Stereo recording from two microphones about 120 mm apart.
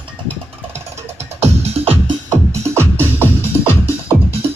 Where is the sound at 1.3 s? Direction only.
60° right (ahead or behind).